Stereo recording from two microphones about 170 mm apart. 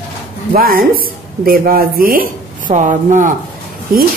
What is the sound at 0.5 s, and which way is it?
Speech, 60° right (ahead or behind).